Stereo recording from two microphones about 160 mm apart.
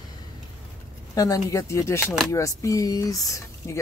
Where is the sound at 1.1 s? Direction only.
20° left (ahead or behind).